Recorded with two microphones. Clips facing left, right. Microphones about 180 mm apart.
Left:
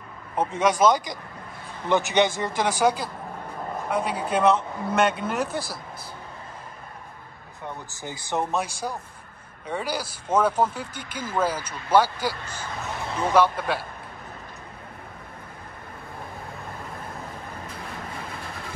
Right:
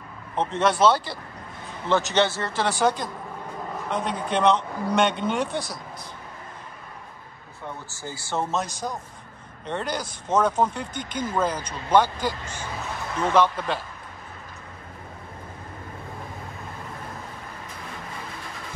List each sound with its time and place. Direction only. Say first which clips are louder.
0.4 s a man's voice: even; 10° left (ahead or behind)
7.9 s speech: left 1 dB; 20° left (ahead or behind)